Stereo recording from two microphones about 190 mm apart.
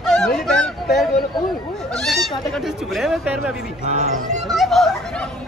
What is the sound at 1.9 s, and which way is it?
Goat, centre (ahead or behind).